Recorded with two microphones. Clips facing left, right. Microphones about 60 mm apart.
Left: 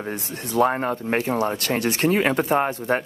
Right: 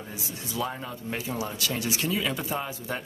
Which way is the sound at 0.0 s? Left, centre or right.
Left.